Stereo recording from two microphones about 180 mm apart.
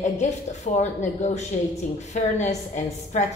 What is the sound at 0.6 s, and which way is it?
A woman's voice, 40° left (ahead or behind).